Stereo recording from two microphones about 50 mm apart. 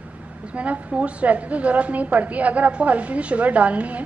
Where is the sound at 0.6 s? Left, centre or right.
Right.